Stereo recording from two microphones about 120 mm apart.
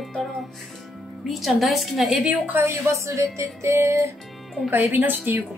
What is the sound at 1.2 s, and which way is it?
A woman's voice, centre (ahead or behind).